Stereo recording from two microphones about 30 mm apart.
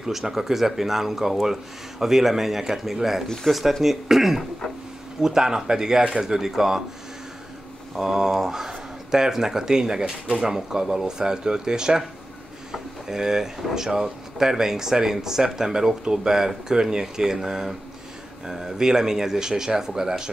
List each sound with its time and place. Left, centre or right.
0.0 s speech: centre
3.5 s speech: centre
3.8 s speech: centre
5.2 s speech: right
8.0 s speech: centre